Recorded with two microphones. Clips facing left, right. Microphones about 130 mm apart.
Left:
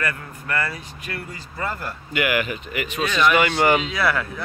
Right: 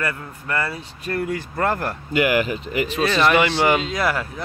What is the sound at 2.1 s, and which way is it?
Speech, 35° right (ahead or behind).